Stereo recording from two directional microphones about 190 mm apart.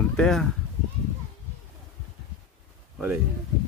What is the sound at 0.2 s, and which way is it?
Speech, 5° left (ahead or behind).